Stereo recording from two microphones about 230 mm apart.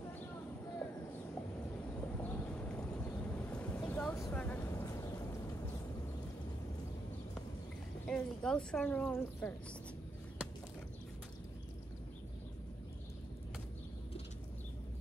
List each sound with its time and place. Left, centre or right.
2.0 s vehicle: centre
8.1 s speech: centre